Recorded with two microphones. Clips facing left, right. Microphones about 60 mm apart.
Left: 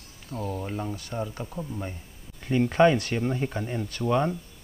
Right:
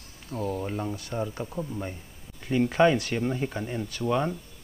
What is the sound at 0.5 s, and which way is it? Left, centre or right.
Speech, centre.